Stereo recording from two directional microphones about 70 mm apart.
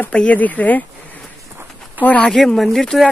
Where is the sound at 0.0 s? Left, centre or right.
Centre.